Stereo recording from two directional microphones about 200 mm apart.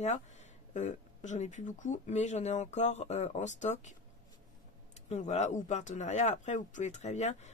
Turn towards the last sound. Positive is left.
turn(degrees=35)  # may be behind; listen again after turning